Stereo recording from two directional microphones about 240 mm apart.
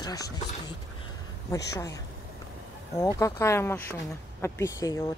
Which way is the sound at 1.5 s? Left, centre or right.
Centre.